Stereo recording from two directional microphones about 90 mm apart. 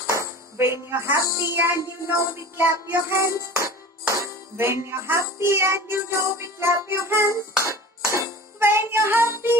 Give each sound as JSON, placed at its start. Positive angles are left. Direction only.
{"t": 0.1, "sound": "speech", "side_deg": -30}
{"t": 2.0, "sound": "music", "side_deg": -25}